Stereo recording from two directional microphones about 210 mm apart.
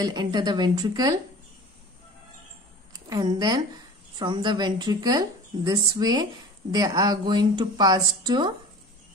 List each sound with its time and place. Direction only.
0.0 s a woman's voice: 20° right (ahead or behind)
2.9 s a woman's voice: 20° right (ahead or behind)